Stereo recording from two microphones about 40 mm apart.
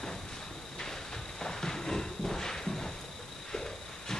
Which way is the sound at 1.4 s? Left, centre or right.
Centre.